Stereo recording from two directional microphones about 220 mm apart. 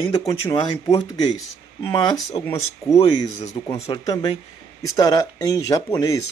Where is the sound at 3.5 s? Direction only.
15° left (ahead or behind).